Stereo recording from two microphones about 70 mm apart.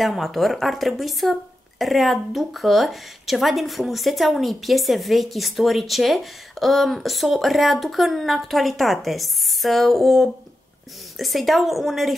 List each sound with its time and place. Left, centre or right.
0.0 s a woman's voice: centre